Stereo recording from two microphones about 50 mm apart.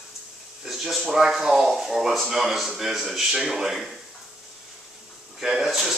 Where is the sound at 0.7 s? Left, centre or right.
Centre.